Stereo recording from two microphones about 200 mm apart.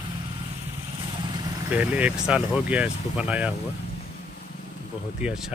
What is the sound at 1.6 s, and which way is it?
Speech, 5° right (ahead or behind).